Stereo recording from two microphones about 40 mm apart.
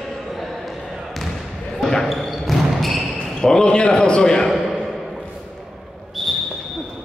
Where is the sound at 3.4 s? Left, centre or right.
Left.